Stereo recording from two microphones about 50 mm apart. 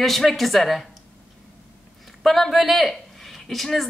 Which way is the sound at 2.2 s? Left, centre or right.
Centre.